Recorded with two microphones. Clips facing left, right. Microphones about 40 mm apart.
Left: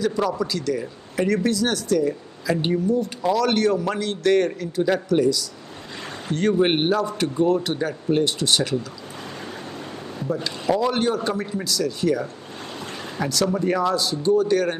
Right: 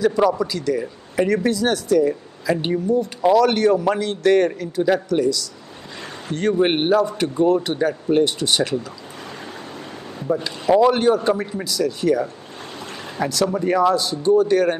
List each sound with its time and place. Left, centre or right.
0.0 s a man's voice: centre
3.2 s speech: right
3.4 s a man's voice: centre
10.2 s a man's voice: centre